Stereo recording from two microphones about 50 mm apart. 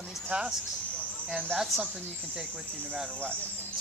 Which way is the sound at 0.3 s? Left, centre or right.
Right.